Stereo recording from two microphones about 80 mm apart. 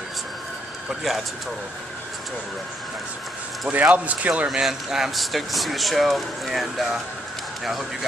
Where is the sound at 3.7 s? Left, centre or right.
Centre.